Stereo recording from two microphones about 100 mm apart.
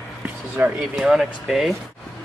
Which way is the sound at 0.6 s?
20° right (ahead or behind).